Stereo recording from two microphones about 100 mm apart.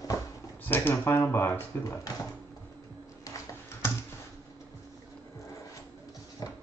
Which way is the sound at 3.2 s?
25° left (ahead or behind).